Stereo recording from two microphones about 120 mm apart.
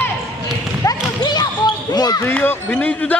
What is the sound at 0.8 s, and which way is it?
Basketball bounce, 35° left (ahead or behind).